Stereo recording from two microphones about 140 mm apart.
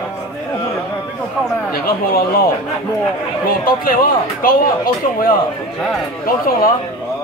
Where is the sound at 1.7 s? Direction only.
90° left.